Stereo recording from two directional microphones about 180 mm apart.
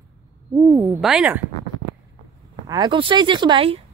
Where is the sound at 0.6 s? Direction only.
5° right (ahead or behind).